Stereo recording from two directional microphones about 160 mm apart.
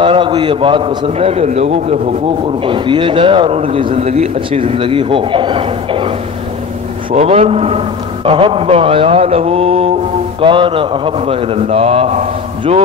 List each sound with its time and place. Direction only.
0.0 s speech: 30° right (ahead or behind)
2.6 s speech: 30° right (ahead or behind)